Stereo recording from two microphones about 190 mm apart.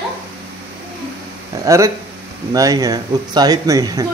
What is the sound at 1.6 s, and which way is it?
Speech, 15° right (ahead or behind).